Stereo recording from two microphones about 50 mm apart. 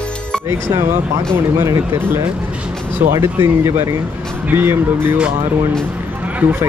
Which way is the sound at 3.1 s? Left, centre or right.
Right.